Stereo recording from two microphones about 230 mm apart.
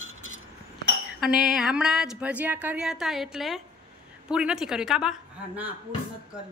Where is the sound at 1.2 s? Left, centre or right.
Centre.